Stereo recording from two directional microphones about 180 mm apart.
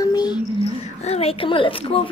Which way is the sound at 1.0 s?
35° left (ahead or behind).